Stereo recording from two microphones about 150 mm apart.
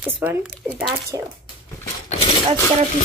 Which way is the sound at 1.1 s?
25° right (ahead or behind).